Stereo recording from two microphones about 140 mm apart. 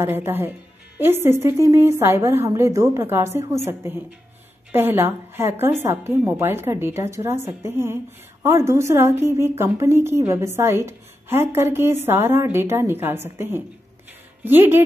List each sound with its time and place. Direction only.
0.0 s a woman's voice: 15° right (ahead or behind)